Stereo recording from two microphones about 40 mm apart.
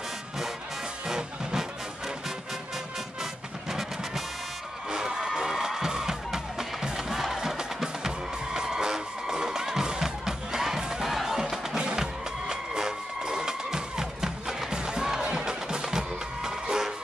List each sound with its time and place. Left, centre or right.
1.0 s music: centre
3.2 s music: centre
11.8 s music: centre